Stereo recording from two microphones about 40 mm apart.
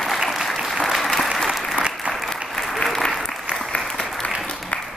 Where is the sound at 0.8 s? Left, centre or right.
Centre.